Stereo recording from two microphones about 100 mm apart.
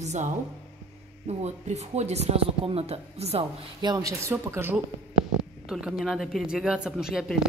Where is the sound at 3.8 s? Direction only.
40° right (ahead or behind); by 4.8 s 25° right (ahead or behind).